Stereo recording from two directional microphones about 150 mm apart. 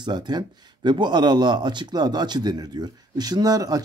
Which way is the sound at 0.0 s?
30° right (ahead or behind).